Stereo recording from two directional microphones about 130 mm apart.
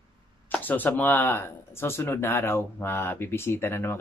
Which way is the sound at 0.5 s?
15° left (ahead or behind).